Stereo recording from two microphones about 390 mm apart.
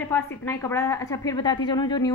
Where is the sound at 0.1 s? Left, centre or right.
Centre.